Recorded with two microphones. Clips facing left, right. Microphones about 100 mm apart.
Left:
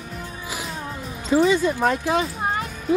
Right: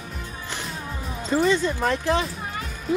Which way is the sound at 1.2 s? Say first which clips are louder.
Left 3 dB; 5° left (ahead or behind).